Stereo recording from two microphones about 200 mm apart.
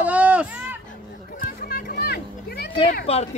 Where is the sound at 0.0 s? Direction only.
5° right (ahead or behind).